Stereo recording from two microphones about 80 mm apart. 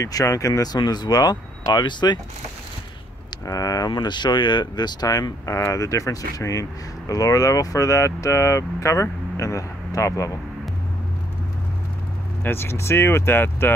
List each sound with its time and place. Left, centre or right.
0.0 s speech: left
0.7 s speech: left
3.4 s speech: left
12.4 s speech: left